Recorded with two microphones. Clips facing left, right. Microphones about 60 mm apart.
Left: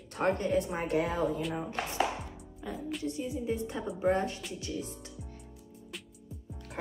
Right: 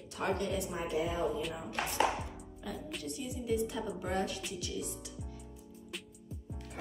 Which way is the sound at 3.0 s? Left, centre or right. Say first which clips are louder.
Left 6 dB; left.